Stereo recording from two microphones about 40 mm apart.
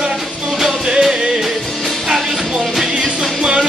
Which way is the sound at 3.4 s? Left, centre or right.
Right.